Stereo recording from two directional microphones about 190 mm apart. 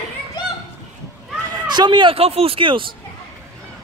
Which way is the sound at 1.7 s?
25° right (ahead or behind).